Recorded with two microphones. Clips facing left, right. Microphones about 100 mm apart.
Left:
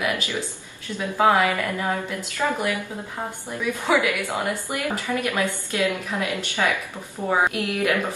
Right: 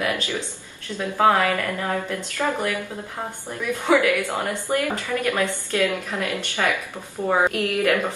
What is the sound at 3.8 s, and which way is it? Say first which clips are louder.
A woman's voice: right 3 dB; 15° left (ahead or behind).